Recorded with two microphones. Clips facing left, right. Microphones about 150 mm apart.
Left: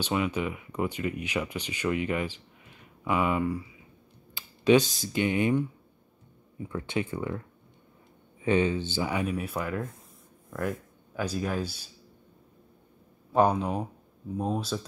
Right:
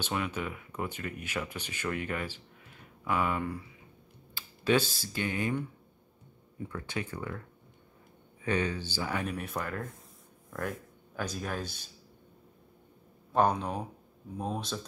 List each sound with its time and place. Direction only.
0.0 s speech: 10° left (ahead or behind)
4.4 s speech: 15° left (ahead or behind)
6.7 s speech: 25° left (ahead or behind)
8.4 s speech: 20° left (ahead or behind)
9.1 s speech: 5° left (ahead or behind)
11.1 s speech: 5° left (ahead or behind)
13.3 s speech: 5° left (ahead or behind)